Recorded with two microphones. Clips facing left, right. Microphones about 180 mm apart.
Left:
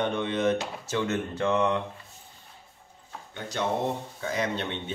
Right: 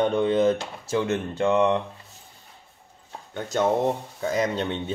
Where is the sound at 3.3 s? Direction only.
45° right (ahead or behind).